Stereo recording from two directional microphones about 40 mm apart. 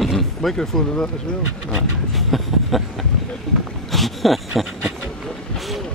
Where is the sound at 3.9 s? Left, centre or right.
Centre.